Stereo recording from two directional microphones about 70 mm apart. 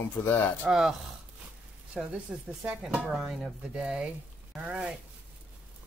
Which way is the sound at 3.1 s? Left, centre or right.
Centre.